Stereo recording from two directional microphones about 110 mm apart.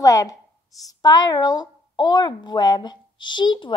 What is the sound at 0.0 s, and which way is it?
A woman's voice, 30° left (ahead or behind).